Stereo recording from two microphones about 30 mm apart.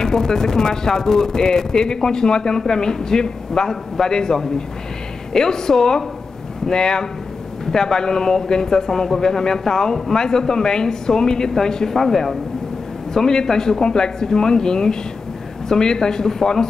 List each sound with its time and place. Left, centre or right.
0.0 s speech: centre
13.1 s speech: left